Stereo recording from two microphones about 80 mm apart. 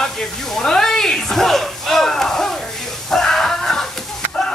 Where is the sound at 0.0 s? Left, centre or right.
Centre.